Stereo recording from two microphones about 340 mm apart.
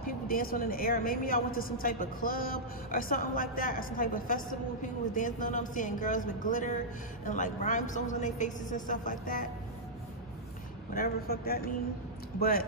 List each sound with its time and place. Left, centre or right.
0.0 s a woman's voice: left
10.9 s a woman's voice: left